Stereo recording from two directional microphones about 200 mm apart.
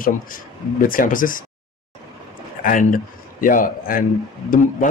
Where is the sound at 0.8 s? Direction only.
45° left (ahead or behind).